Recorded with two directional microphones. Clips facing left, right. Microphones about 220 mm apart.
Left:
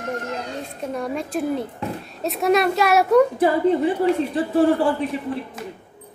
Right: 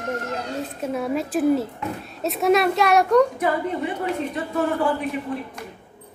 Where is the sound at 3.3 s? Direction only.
30° left (ahead or behind).